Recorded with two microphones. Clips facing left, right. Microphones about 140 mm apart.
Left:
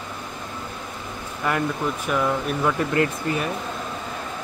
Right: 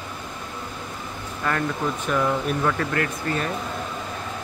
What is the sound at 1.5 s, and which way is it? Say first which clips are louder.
Speech: left 1 dB; 10° left (ahead or behind).